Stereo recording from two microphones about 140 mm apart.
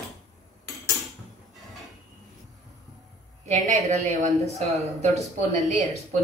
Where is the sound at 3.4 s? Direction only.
60° right (ahead or behind).